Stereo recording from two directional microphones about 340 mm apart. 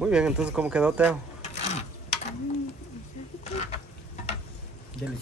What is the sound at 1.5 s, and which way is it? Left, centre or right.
Ratchet, centre.